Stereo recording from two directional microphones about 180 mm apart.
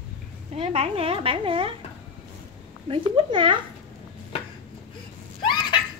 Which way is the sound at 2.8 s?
30° right (ahead or behind).